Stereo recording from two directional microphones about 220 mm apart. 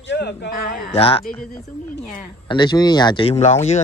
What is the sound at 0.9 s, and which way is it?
Speech, 25° left (ahead or behind).